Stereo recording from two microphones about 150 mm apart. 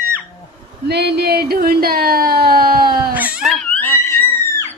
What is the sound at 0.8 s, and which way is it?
Speech, 90° right.